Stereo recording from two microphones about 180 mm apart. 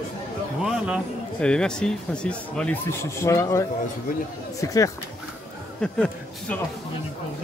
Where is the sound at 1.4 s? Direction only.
5° left (ahead or behind).